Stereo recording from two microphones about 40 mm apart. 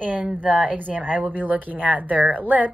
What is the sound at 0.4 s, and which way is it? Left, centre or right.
A woman's voice, right.